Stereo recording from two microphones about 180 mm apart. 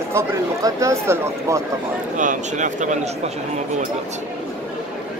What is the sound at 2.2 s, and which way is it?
Speech, 45° right (ahead or behind).